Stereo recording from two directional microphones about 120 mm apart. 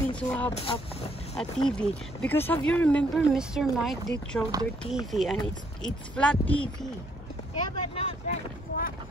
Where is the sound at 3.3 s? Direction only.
5° right (ahead or behind).